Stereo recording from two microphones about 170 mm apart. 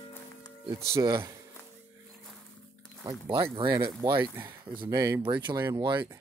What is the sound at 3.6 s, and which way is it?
Speech, 15° right (ahead or behind).